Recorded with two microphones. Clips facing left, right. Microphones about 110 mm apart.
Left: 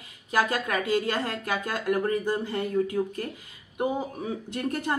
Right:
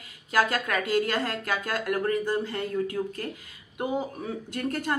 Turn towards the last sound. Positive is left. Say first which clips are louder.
# left 1 dB
turn(degrees=15)  # may be behind; listen again after turning